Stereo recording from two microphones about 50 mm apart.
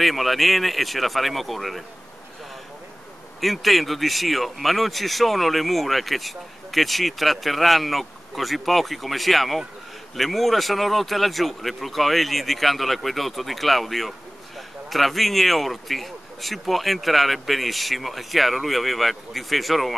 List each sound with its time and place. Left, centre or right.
0.0 s speech: centre
3.3 s speech: centre